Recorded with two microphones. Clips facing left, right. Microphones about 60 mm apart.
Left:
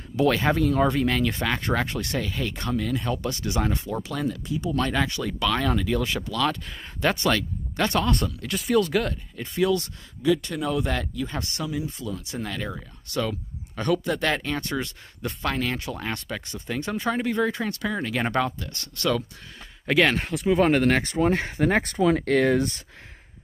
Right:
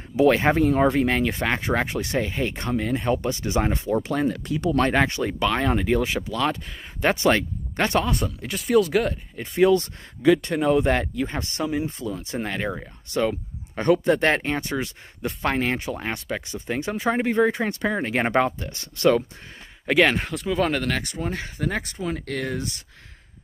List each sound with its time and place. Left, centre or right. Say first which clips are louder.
0.1 s speech: right 4 dB; right
4.5 s speech: right 4 dB; right
4.7 s speech: right 5 dB; right
6.2 s speech: right 1 dB; centre
8.0 s speech: left 1 dB; centre
9.6 s speech: right 5 dB; right
10.2 s speech: right 4 dB; right
10.5 s speech: right 6 dB; right; by 14.9 s centre
15.4 s speech: right 3 dB; right
15.9 s speech: right 3 dB; centre
19.9 s speech: right 2 dB; centre
20.4 s speech: left 4 dB; left
21.0 s speech: left 7 dB; left